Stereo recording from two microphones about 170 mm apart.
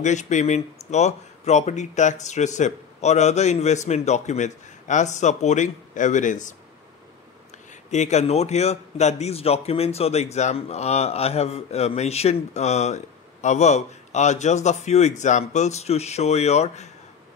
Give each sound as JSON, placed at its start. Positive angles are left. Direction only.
{"t": 0.0, "sound": "speech", "side_deg": 45}
{"t": 7.9, "sound": "a man's voice", "side_deg": 40}